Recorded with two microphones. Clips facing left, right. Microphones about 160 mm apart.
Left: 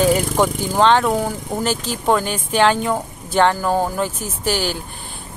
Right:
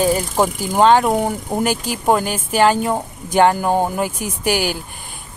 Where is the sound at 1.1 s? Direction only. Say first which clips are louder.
Right 2 dB; 20° right (ahead or behind).